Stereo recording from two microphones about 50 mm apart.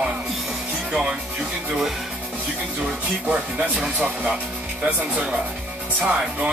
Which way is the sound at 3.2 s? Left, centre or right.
Right.